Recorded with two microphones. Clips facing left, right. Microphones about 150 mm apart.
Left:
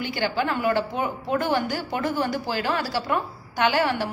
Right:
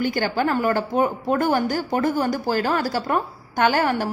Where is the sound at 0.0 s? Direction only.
45° right (ahead or behind).